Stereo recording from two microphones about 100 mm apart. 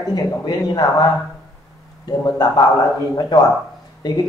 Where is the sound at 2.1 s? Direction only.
40° left (ahead or behind).